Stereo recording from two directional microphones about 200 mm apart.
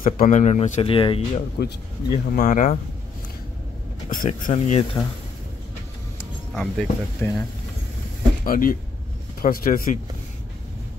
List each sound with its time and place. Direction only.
0.0 s speech: 40° left (ahead or behind)
1.6 s speech: 45° left (ahead or behind)
4.1 s speech: 40° left (ahead or behind)
6.5 s speech: 5° left (ahead or behind)
8.5 s speech: 45° left (ahead or behind)